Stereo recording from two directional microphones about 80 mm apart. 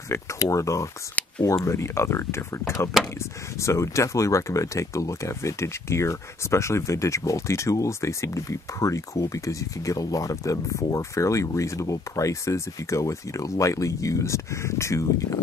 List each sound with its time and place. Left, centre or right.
0.1 s speech: left